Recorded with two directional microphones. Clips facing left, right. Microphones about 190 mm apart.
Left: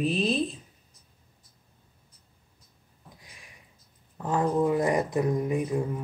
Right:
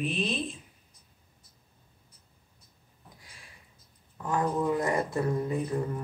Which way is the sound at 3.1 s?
20° left (ahead or behind).